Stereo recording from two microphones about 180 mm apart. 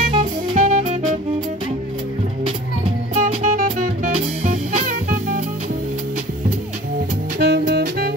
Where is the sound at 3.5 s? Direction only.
45° right (ahead or behind).